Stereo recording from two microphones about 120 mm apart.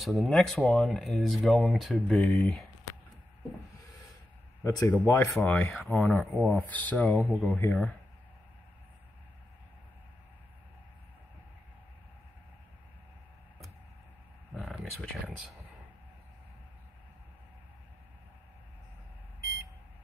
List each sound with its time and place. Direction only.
0.0 s speech: centre (ahead or behind)
2.1 s speech: 10° left (ahead or behind)
4.6 s speech: 25° left (ahead or behind)
14.5 s a sound: centre (ahead or behind)